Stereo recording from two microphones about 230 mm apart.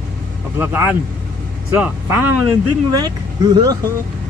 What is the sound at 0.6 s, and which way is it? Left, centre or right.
Speech, centre.